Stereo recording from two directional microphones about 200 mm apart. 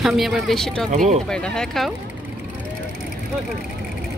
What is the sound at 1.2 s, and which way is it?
Speech, 5° left (ahead or behind).